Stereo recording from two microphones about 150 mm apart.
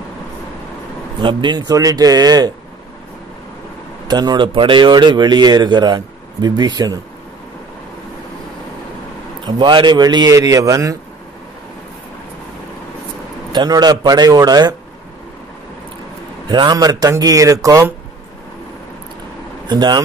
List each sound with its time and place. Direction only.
1.2 s speech: 30° right (ahead or behind)
4.1 s speech: 30° right (ahead or behind)
9.5 s speech: 30° right (ahead or behind)
13.5 s speech: 30° right (ahead or behind)
16.4 s speech: 30° right (ahead or behind)
19.7 s speech: 30° right (ahead or behind)